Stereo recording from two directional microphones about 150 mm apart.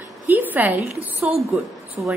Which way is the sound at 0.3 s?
10° right (ahead or behind).